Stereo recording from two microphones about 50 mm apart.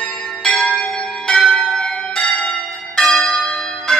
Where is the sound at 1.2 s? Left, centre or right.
Centre.